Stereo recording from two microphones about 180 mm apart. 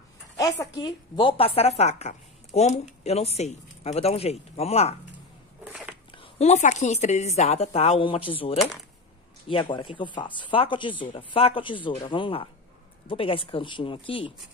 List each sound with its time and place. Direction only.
0.4 s a woman's voice: 20° left (ahead or behind); by 4.9 s 35° left (ahead or behind)
5.7 s biting: 5° right (ahead or behind)
6.1 s a woman's voice: 35° left (ahead or behind)